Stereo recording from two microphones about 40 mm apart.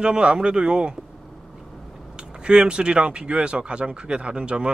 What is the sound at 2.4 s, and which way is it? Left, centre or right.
Speech, right.